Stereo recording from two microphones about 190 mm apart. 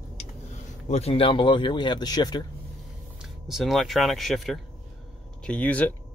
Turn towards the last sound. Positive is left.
turn(degrees=10)  # may be behind; listen again after turning